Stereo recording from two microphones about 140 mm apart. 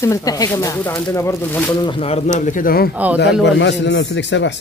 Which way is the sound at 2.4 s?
75° left (ahead or behind).